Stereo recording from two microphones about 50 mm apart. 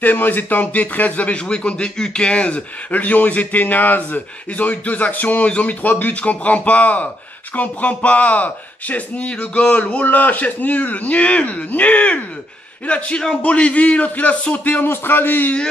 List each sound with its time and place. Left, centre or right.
0.0 s speech: left
2.9 s a man's voice: left
14.9 s a man's voice: left